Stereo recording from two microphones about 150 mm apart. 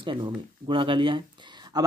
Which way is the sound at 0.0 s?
35° right (ahead or behind).